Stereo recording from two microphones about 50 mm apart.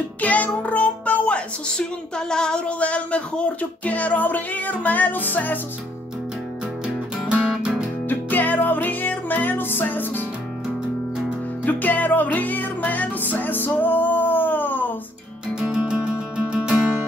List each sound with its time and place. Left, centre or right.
0.2 s music: left
1.7 s speech: centre; by 5.6 s left
8.1 s music: left
11.6 s music: left
15.6 s music: right